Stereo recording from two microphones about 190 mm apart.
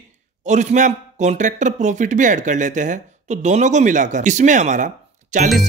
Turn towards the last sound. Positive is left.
turn(degrees=-40)  # may be behind; listen again after turning